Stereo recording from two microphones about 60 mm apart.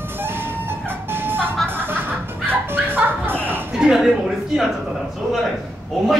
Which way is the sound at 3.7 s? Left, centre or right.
Centre.